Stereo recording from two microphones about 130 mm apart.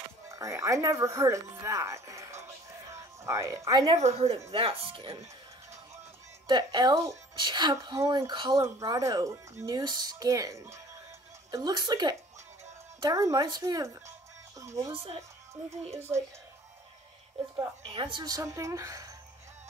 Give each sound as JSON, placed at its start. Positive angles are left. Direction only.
{"t": 0.3, "sound": "speech", "side_deg": -25}
{"t": 3.9, "sound": "speech", "side_deg": -55}
{"t": 6.4, "sound": "a woman's voice", "side_deg": -35}
{"t": 8.3, "sound": "a woman's voice", "side_deg": -35}
{"t": 8.5, "sound": "a woman's voice", "side_deg": -20}
{"t": 14.9, "sound": "speech", "side_deg": -50}
{"t": 17.8, "sound": "speech", "side_deg": -40}